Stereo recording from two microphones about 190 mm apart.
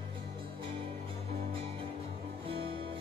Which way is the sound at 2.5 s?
30° right (ahead or behind).